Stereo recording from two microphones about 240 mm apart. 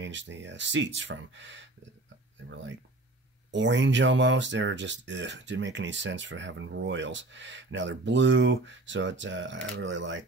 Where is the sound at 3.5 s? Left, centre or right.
Right.